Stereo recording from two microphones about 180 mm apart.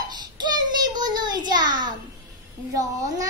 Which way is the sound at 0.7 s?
25° right (ahead or behind).